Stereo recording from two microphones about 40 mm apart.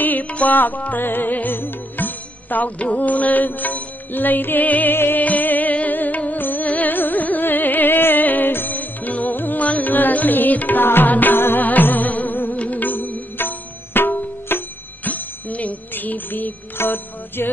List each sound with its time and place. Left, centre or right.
0.0 s music: left
1.0 s music: left
4.9 s music: left
5.2 s music: left
10.8 s music: left
15.0 s music: left
16.7 s music: left